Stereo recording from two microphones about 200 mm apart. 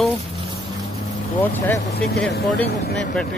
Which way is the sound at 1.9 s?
55° left (ahead or behind).